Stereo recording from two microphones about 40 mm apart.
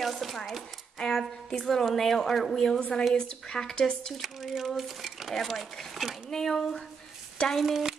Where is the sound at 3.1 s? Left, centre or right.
Left.